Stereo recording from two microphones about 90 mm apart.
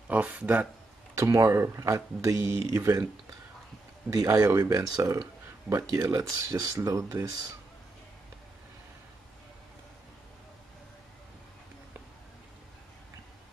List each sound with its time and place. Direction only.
0.1 s speech: 15° right (ahead or behind)
1.1 s speech: 35° right (ahead or behind)
4.1 s speech: 40° right (ahead or behind)